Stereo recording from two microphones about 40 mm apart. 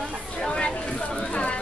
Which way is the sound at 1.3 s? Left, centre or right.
Left.